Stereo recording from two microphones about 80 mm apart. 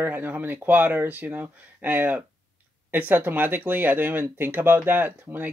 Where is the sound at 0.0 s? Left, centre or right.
Right.